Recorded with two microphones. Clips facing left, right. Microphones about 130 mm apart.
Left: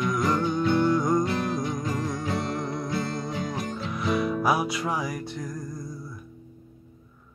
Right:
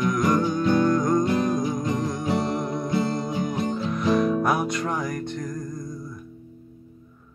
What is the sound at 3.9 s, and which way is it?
Music, 5° left (ahead or behind).